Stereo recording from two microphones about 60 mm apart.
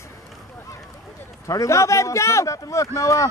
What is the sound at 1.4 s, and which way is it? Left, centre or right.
Speech, left.